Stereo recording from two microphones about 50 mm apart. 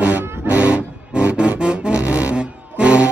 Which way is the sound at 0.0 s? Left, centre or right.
Right.